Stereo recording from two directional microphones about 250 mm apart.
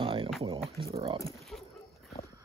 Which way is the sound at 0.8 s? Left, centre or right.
Centre.